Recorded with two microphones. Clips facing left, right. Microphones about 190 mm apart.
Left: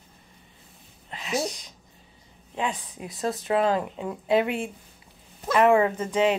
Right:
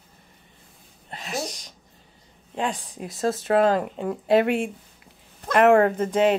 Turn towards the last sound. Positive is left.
turn(degrees=-50)  # may be behind; listen again after turning